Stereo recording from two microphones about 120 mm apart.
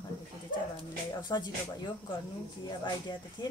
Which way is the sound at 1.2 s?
40° left (ahead or behind).